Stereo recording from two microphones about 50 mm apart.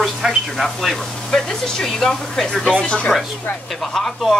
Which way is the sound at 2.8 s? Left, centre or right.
Left.